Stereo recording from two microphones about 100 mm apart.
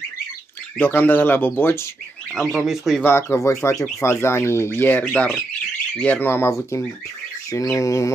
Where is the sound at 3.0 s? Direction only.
25° left (ahead or behind).